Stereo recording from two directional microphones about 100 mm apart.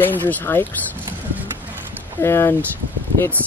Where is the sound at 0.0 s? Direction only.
20° left (ahead or behind).